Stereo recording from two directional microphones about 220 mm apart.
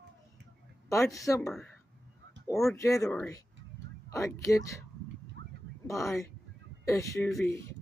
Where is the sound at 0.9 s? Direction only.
15° left (ahead or behind).